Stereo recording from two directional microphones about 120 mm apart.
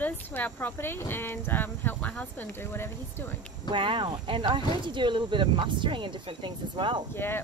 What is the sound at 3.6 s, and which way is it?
Speech, 45° right (ahead or behind).